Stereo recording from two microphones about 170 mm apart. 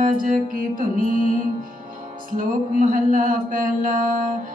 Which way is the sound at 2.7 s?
55° right (ahead or behind).